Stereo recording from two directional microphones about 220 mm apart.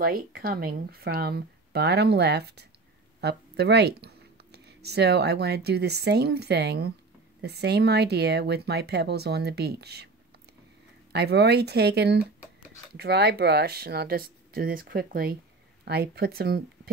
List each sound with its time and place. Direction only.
0.0 s speech: 45° right (ahead or behind)
11.1 s speech: 50° right (ahead or behind)